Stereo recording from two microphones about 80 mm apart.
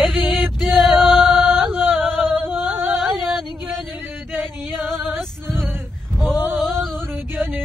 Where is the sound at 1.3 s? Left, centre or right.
Right.